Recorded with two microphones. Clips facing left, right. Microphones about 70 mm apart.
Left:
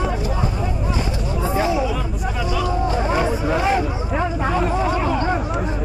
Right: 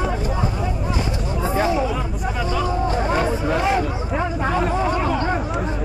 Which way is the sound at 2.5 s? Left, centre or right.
Right.